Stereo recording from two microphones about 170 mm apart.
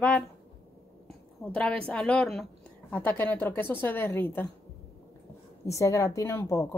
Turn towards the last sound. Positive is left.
turn(degrees=20)  # may be behind; listen again after turning